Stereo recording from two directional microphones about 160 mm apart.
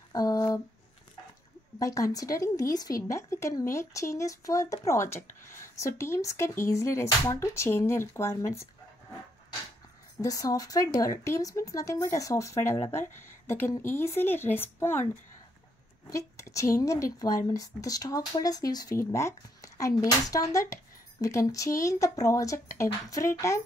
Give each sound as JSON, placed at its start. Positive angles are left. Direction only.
{"t": 0.1, "sound": "a sound", "side_deg": 20}
{"t": 1.8, "sound": "speech", "side_deg": 20}
{"t": 10.2, "sound": "speech", "side_deg": 25}
{"t": 16.1, "sound": "speech", "side_deg": 20}